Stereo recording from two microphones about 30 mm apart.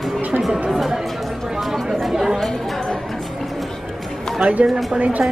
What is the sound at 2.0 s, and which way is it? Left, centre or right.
Chatter, centre.